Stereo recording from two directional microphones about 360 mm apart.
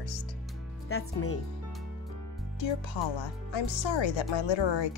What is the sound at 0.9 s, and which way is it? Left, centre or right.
Speech, left.